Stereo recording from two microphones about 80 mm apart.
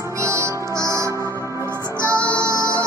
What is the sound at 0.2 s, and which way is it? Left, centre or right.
Music, right.